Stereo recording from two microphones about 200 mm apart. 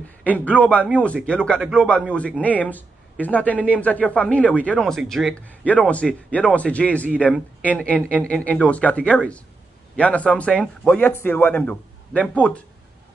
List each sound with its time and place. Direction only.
0.2 s a man's voice: 5° left (ahead or behind)